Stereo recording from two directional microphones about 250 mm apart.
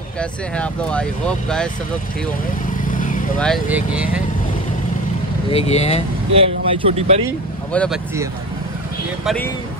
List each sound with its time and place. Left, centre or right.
0.2 s speech: centre
2.8 s vehicle: left
3.3 s speech: centre
5.5 s speech: left
6.3 s speech: right
7.7 s speech: centre
9.2 s speech: centre